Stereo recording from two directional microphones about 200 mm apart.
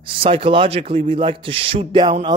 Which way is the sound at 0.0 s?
25° right (ahead or behind).